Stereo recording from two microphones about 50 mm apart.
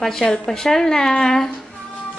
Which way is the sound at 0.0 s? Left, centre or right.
Centre.